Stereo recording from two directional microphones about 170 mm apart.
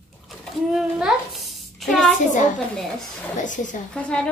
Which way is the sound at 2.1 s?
50° left (ahead or behind).